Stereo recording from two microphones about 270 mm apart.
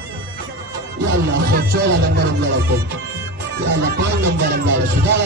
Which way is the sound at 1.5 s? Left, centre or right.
Right.